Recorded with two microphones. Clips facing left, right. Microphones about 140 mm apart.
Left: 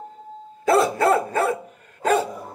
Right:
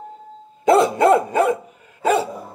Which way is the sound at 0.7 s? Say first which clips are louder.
Right 4 dB; 20° right (ahead or behind).